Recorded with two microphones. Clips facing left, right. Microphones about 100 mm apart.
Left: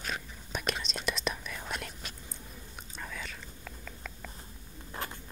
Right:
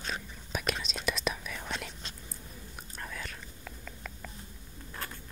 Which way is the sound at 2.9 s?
Centre (ahead or behind).